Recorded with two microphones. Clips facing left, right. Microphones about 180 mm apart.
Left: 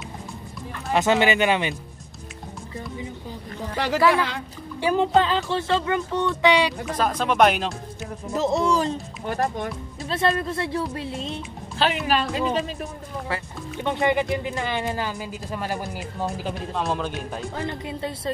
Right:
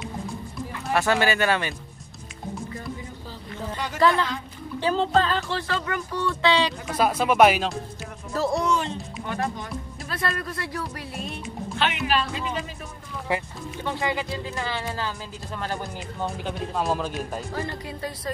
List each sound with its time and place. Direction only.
0.9 s speech: 20° left (ahead or behind)
3.7 s speech: 75° left (ahead or behind)
4.7 s speech: 15° left (ahead or behind)
6.4 s speech: 15° left (ahead or behind)
7.0 s speech: 10° right (ahead or behind)
8.3 s speech: 20° left (ahead or behind)
8.7 s speech: 40° left (ahead or behind)
10.0 s speech: 25° left (ahead or behind)
12.1 s speech: 45° left (ahead or behind)
13.3 s speech: 15° right (ahead or behind)
13.8 s speech: 20° left (ahead or behind); by 17.4 s 5° right (ahead or behind)
17.6 s speech: 20° left (ahead or behind)